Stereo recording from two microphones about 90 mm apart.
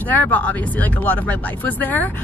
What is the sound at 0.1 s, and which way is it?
Speech, 20° left (ahead or behind).